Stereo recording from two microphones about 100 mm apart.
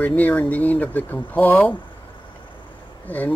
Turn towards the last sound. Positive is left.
turn(degrees=15)  # may be behind; listen again after turning